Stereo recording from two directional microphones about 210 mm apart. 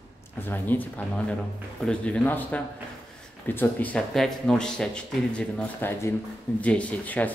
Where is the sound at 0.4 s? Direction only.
10° left (ahead or behind).